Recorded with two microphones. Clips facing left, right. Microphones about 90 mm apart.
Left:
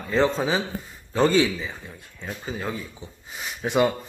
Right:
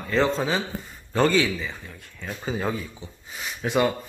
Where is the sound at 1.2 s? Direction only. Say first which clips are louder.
Left 2 dB; 25° left (ahead or behind).